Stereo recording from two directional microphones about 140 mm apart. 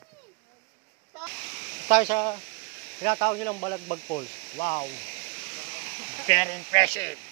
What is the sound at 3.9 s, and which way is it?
Speech, 50° left (ahead or behind).